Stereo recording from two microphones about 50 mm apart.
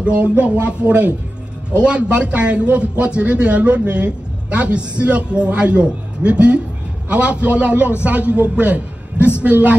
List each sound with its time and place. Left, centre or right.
0.0 s a man's voice: right